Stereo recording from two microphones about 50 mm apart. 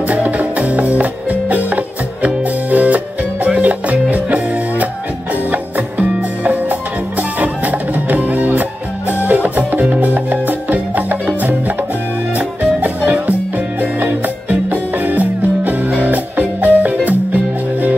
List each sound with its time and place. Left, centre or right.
0.0 s music: right